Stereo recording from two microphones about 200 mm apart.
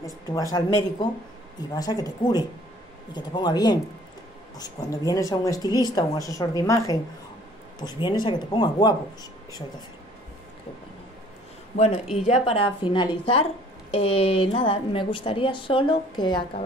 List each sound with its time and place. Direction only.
0.0 s speech: 15° left (ahead or behind)
1.8 s a woman's voice: 20° left (ahead or behind)
11.7 s a woman's voice: 30° left (ahead or behind)